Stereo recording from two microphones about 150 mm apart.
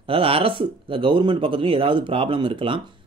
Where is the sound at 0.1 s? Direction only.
40° right (ahead or behind).